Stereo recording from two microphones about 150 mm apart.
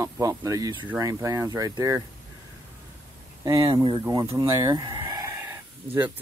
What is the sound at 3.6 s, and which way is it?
Speech, 35° right (ahead or behind).